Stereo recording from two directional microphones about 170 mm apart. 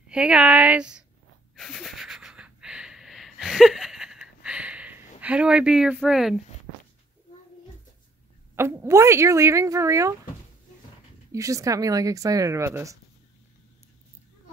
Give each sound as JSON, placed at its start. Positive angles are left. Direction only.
{"t": 0.1, "sound": "speech", "side_deg": -5}
{"t": 1.6, "sound": "wheeze", "side_deg": 0}
{"t": 5.2, "sound": "speech", "side_deg": -5}
{"t": 8.5, "sound": "speech", "side_deg": -15}
{"t": 11.3, "sound": "speech", "side_deg": -20}